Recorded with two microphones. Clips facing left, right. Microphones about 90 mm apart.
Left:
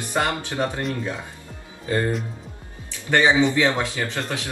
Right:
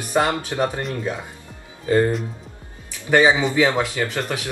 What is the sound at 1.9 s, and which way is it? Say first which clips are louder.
Speech: right 5 dB; 5° right (ahead or behind).